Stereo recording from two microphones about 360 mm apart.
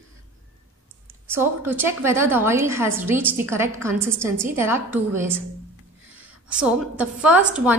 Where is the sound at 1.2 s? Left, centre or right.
Centre.